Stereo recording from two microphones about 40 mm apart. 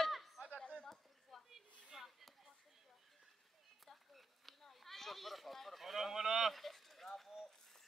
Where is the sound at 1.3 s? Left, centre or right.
Centre.